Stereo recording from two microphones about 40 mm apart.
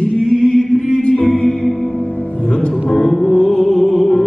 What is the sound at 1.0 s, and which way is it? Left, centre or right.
Music, centre.